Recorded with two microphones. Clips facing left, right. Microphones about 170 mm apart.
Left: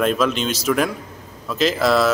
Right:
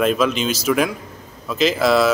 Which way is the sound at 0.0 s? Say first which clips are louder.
Right 1 dB; centre (ahead or behind).